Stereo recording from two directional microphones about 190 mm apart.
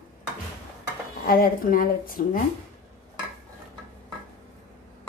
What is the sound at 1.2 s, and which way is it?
Speech, 50° left (ahead or behind).